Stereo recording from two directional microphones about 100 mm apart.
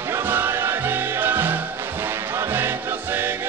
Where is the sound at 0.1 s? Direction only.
20° right (ahead or behind).